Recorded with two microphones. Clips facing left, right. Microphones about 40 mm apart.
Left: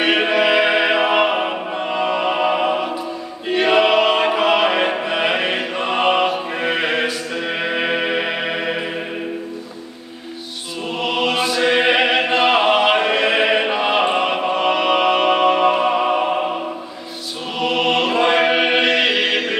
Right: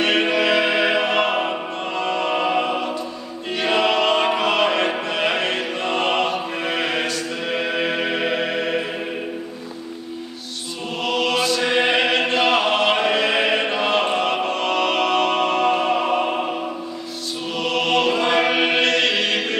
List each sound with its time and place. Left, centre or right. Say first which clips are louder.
0.0 s music: left 2 dB; centre
11.0 s music: left 1 dB; centre
17.6 s music: left 2 dB; centre